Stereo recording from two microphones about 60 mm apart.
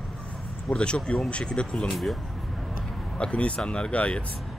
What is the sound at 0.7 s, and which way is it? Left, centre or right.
Speech, centre.